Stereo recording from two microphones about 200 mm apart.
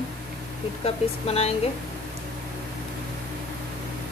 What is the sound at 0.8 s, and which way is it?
Speech, 30° left (ahead or behind).